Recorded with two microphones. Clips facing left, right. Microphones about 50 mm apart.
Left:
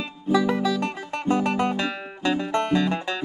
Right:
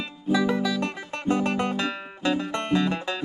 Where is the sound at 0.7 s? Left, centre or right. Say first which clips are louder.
Left 2 dB; left.